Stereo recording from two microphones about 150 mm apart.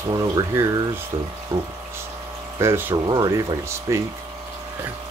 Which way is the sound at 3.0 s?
25° right (ahead or behind).